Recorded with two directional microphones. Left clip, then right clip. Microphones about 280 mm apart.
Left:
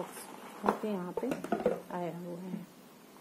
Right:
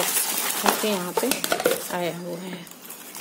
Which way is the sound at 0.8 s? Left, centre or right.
Right.